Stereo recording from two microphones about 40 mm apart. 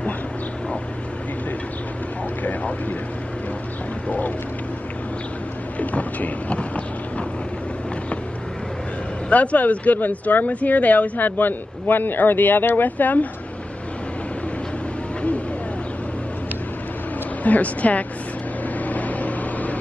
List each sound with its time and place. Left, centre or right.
5.8 s speech: left
9.3 s speech: left
17.4 s speech: left
18.9 s microwave oven: left